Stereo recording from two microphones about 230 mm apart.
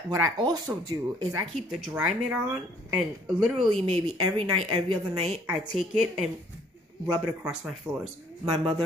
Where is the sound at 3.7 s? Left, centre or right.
Right.